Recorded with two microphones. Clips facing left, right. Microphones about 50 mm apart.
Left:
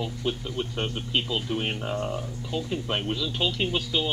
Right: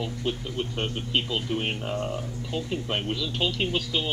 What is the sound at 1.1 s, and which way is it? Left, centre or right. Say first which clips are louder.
Speech: even; centre.